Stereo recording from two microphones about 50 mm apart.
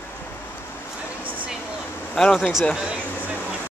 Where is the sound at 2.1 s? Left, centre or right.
Centre.